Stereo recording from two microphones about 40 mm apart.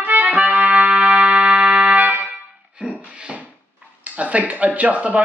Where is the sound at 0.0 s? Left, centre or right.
Right.